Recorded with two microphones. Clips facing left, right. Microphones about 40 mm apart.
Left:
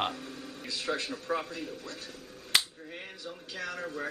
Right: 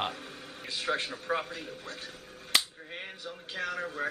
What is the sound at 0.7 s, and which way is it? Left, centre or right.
Speech, right.